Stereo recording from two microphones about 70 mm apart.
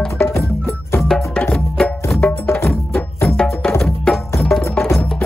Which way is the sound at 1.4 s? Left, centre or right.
Centre.